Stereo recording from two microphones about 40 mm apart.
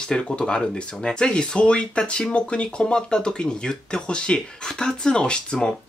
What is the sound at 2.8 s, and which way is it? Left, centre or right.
Speech, centre.